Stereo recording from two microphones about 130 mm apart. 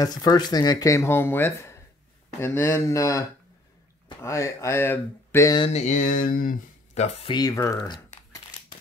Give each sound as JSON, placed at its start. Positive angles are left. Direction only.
{"t": 0.0, "sound": "speech", "side_deg": 30}
{"t": 5.7, "sound": "speech", "side_deg": 65}
{"t": 7.2, "sound": "speech", "side_deg": 30}